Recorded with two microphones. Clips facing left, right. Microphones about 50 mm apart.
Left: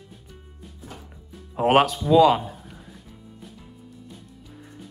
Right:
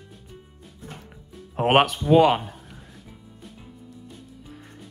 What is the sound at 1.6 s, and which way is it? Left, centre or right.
Music, centre.